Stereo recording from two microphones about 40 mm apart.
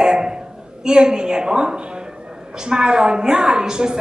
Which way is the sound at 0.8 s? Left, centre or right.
Centre.